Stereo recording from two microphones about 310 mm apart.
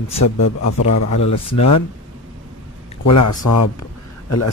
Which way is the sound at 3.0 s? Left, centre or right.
Left.